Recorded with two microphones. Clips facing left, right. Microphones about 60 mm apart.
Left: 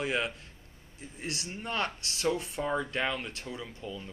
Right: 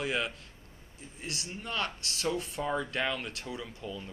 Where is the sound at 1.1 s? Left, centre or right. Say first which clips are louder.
Left 2 dB; left.